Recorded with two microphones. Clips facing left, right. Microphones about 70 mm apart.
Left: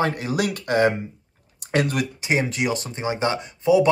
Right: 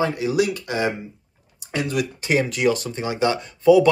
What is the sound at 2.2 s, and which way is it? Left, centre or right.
Speech, centre.